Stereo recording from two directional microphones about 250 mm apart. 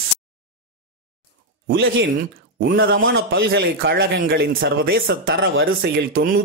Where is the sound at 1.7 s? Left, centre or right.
Right.